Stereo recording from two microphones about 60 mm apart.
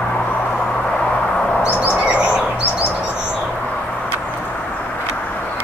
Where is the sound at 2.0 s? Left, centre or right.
Centre.